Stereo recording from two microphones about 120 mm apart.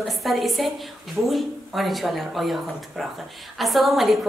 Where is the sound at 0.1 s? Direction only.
Centre (ahead or behind).